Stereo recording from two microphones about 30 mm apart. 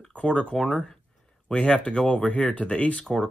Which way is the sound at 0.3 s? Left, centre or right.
Left.